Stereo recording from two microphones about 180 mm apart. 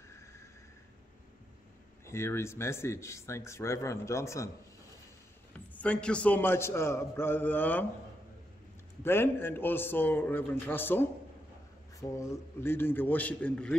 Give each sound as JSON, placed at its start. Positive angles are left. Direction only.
{"t": 0.1, "sound": "a sound", "side_deg": 15}
{"t": 2.0, "sound": "speech", "side_deg": 15}
{"t": 5.7, "sound": "speech", "side_deg": 5}
{"t": 9.0, "sound": "speech", "side_deg": 15}